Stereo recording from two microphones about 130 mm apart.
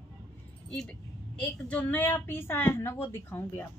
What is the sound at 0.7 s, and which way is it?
A woman's voice, 5° left (ahead or behind).